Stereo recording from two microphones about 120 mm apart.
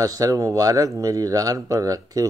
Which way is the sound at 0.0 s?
30° right (ahead or behind).